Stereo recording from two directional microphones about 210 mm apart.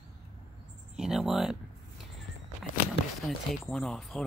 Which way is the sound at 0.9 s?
Centre (ahead or behind).